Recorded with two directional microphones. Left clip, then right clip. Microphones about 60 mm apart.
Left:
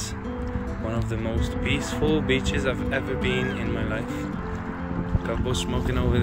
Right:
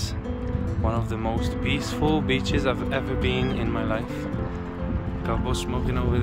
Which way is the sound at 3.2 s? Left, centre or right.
Right.